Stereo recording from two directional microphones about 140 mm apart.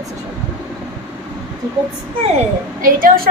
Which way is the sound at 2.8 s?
90° right.